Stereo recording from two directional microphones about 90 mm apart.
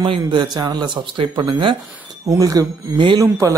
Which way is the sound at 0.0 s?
70° right (ahead or behind).